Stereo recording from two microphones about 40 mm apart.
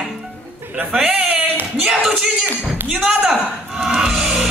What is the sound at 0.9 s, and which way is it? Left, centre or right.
Speech, centre.